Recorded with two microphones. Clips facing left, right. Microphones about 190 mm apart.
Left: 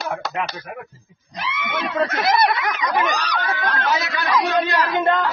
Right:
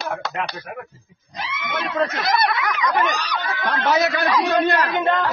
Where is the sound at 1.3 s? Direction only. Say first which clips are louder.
Left 1 dB; 65° left (ahead or behind).